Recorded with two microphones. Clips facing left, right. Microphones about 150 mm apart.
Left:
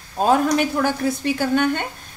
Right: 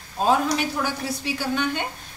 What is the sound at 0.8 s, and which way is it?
A woman's voice, 50° left (ahead or behind).